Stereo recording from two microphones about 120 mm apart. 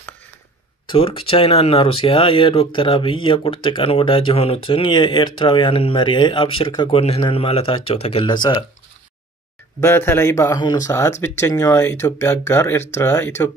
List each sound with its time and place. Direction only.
0.9 s speech: 50° left (ahead or behind)
8.3 s speech: 40° left (ahead or behind)
9.8 s speech: 20° left (ahead or behind)